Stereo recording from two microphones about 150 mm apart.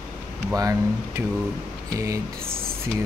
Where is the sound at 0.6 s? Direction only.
20° right (ahead or behind).